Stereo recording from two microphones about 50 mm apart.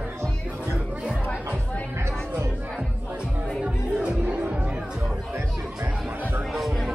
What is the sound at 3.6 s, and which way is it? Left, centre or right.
Music, centre.